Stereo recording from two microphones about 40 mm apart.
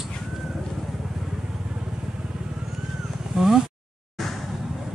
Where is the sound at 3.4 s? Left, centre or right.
Centre.